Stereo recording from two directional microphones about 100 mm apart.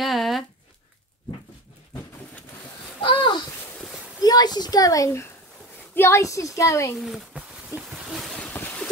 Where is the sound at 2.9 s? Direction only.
55° left (ahead or behind).